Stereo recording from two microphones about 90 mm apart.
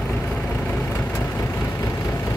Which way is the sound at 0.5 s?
15° left (ahead or behind).